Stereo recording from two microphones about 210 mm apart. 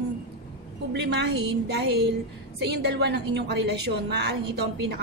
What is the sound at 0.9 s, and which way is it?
A woman's voice, 55° right (ahead or behind).